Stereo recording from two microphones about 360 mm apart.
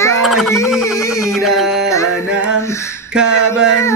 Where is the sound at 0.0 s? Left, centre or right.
Centre.